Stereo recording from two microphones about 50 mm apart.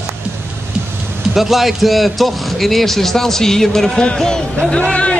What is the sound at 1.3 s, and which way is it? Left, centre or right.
A man's voice, centre.